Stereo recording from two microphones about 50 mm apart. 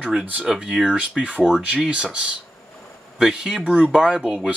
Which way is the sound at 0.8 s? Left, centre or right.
Right.